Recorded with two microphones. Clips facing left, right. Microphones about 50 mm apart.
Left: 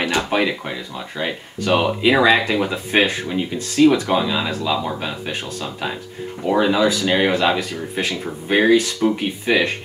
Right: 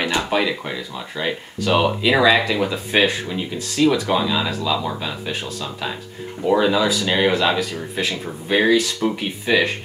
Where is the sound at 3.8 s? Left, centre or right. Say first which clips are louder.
Left 3 dB; centre.